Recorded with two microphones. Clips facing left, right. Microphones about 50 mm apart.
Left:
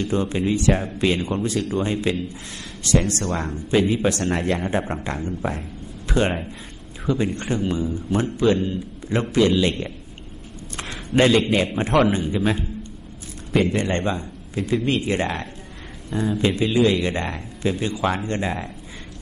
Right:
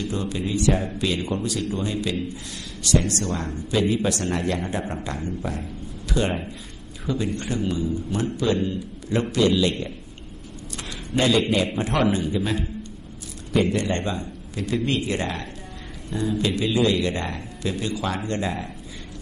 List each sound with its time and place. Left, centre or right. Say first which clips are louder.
0.0 s a man's voice: left 5 dB; left